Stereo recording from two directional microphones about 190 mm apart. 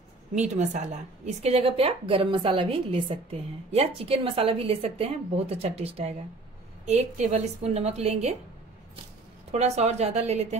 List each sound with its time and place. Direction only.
0.3 s a woman's voice: 40° right (ahead or behind)
9.5 s a woman's voice: 35° right (ahead or behind)